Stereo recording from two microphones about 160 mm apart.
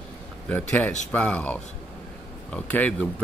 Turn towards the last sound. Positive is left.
turn(degrees=10)  # may be behind; listen again after turning